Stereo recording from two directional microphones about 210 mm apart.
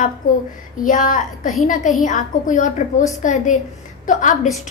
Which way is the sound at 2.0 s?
35° left (ahead or behind).